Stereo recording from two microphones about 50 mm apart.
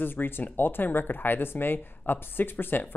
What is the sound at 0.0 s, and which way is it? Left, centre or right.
Speech, left.